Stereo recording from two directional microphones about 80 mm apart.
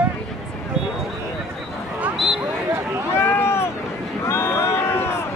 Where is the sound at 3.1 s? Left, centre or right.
Left.